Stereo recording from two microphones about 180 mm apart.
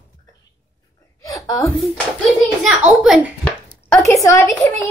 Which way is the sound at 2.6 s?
Centre (ahead or behind).